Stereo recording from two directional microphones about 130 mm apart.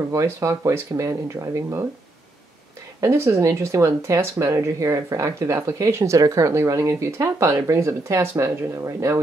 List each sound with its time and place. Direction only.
0.1 s speech: 25° right (ahead or behind)
3.0 s speech: 20° right (ahead or behind)